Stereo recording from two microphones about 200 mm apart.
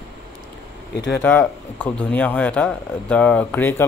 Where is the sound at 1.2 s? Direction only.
10° left (ahead or behind).